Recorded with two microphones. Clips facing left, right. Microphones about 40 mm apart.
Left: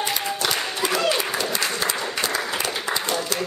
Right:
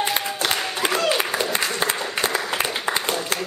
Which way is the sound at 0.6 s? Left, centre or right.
Centre.